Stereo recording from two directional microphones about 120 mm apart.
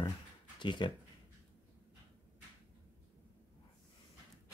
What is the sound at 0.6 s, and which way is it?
Speech, 40° left (ahead or behind).